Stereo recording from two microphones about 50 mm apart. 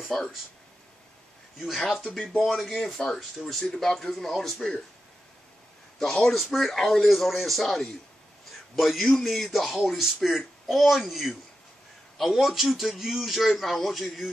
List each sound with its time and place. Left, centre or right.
0.0 s speech: centre
2.4 s a man's voice: centre
5.9 s a man's voice: centre